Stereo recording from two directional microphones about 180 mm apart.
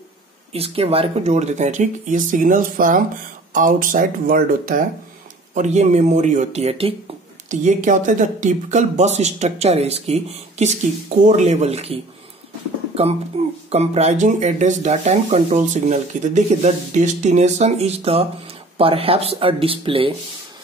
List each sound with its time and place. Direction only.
0.5 s speech: 35° right (ahead or behind)
7.4 s speech: 45° right (ahead or behind)
13.4 s music: 35° right (ahead or behind)
13.7 s speech: 35° right (ahead or behind)